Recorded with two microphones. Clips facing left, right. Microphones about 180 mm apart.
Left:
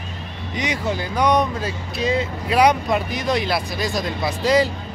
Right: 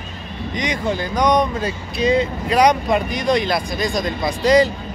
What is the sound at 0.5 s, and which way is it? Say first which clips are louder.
Speech: right 2 dB; 5° left (ahead or behind).